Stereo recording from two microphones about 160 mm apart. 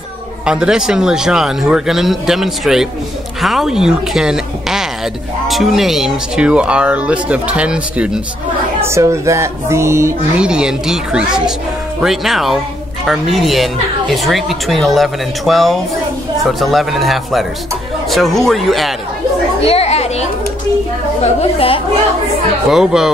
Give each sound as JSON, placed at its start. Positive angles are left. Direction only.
{"t": 0.5, "sound": "speech", "side_deg": -5}
{"t": 8.8, "sound": "speech", "side_deg": -15}
{"t": 10.4, "sound": "speech", "side_deg": -5}
{"t": 19.6, "sound": "chatter", "side_deg": 40}
{"t": 21.2, "sound": "a woman's voice", "side_deg": 40}
{"t": 22.7, "sound": "speech", "side_deg": -5}